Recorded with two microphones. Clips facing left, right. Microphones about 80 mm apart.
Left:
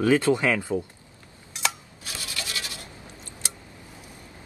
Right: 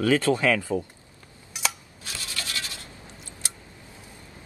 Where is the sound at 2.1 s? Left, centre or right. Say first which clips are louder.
Even; left.